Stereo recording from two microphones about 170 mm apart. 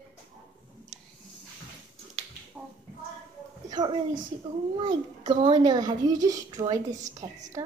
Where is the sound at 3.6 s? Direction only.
25° right (ahead or behind).